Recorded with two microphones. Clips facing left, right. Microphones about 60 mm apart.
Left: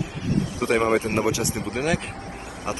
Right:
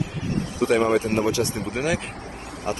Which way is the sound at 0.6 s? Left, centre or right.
Left.